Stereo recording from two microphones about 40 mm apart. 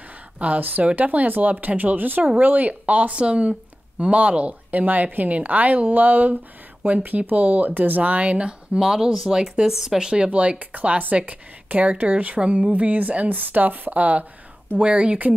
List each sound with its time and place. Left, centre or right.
0.6 s a woman's voice: right
8.4 s a woman's voice: right